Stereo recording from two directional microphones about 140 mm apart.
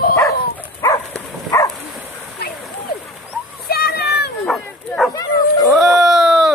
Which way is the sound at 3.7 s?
90° left.